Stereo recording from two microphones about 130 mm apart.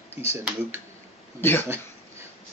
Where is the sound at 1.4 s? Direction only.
15° left (ahead or behind).